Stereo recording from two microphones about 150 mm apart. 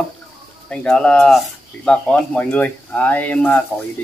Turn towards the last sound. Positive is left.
turn(degrees=10)  # may be behind; listen again after turning